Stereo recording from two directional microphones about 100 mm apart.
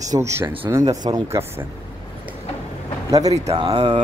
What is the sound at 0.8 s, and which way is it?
Speech, 40° right (ahead or behind).